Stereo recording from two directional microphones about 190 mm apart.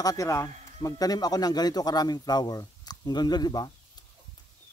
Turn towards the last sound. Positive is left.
turn(degrees=20)  # may be behind; listen again after turning